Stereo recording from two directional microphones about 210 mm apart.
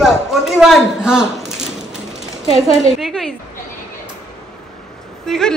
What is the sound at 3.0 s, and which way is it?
Speech, centre (ahead or behind).